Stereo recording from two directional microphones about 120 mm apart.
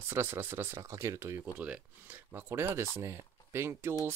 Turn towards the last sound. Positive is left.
turn(degrees=-20)  # may be behind; listen again after turning